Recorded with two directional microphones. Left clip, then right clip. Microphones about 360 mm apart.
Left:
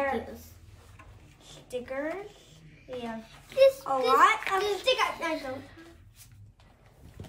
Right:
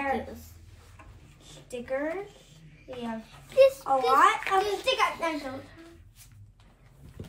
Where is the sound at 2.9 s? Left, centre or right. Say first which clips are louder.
Even; centre.